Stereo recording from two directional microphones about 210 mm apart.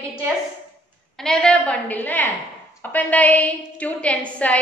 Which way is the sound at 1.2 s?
5° left (ahead or behind).